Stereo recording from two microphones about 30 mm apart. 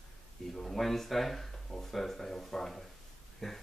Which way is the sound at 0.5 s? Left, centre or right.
Centre.